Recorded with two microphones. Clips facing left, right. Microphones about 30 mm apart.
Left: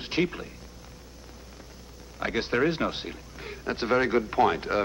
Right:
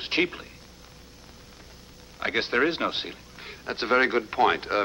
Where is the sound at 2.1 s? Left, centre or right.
Right.